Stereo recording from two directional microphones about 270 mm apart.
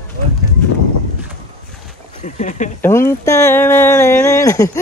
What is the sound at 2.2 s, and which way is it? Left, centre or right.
Speech, left.